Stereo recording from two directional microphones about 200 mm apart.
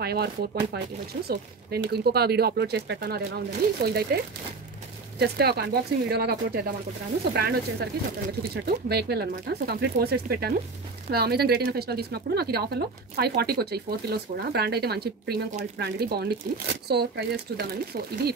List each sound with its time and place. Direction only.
0.0 s speech: 50° right (ahead or behind)
5.2 s speech: 55° right (ahead or behind)